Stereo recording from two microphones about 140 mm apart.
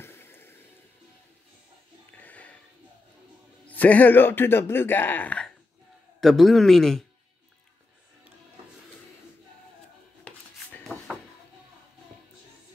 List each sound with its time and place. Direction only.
0.0 s music: 15° left (ahead or behind)
2.1 s a sound: 10° left (ahead or behind)
3.6 s a man's voice: 10° left (ahead or behind)
10.2 s music: 10° left (ahead or behind)